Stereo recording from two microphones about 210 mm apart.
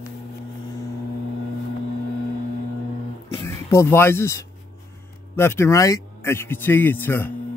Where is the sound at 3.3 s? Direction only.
10° left (ahead or behind).